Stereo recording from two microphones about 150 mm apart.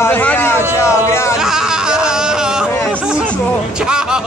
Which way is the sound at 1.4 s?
5° right (ahead or behind).